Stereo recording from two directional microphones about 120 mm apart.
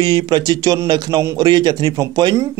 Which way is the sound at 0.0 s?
35° right (ahead or behind).